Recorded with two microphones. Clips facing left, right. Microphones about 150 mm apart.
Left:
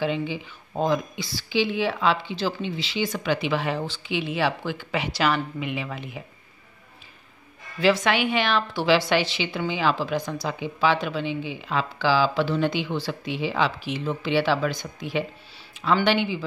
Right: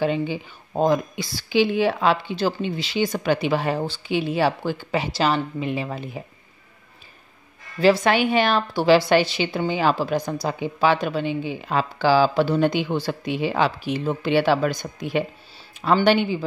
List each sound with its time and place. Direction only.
0.0 s speech: 45° right (ahead or behind)
7.8 s speech: 40° right (ahead or behind)